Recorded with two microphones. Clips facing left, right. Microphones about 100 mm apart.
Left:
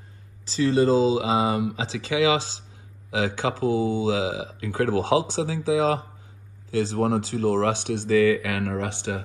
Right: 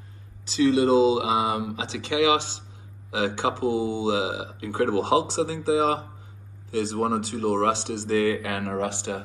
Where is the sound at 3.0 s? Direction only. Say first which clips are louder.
Even; 30° right (ahead or behind).